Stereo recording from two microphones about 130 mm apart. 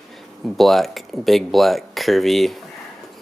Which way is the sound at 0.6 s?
Centre (ahead or behind).